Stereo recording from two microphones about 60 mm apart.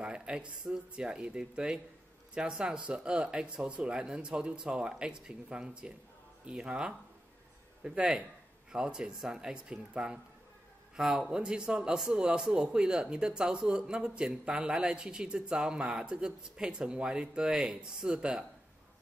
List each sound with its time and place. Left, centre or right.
0.0 s a man's voice: centre